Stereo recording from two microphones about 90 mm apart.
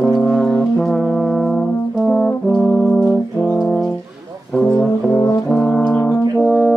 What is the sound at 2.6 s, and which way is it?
Brass instrument, 15° left (ahead or behind).